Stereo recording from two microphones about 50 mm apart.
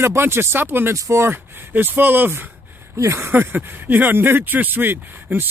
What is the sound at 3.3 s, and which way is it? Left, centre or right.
Speech, right.